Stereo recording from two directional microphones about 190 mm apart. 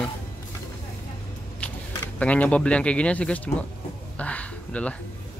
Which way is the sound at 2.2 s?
5° left (ahead or behind).